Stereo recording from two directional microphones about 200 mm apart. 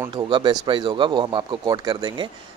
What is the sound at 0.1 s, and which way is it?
Speech, 25° right (ahead or behind).